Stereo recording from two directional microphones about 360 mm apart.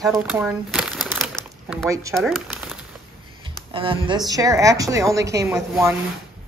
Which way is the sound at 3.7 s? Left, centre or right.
Centre.